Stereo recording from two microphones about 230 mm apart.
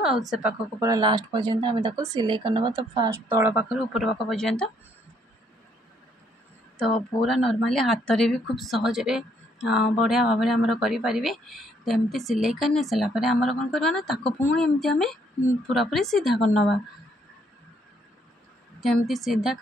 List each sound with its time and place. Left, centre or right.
0.3 s speech: centre
6.8 s speech: centre
18.8 s speech: centre